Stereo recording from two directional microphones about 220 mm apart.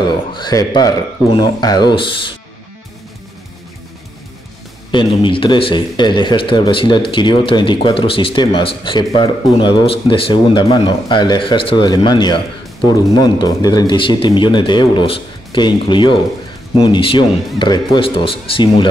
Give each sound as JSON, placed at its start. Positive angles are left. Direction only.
{"t": 0.3, "sound": "speech", "side_deg": 20}
{"t": 4.9, "sound": "speech", "side_deg": 20}